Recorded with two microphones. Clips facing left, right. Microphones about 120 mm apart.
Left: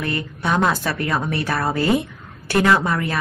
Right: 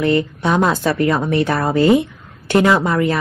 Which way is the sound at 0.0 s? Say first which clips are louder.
Right 8 dB; 25° right (ahead or behind).